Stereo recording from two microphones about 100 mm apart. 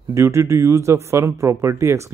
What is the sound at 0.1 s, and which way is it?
Speech, 30° right (ahead or behind).